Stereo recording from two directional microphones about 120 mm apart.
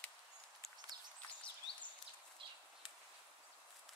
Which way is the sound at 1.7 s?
50° left (ahead or behind).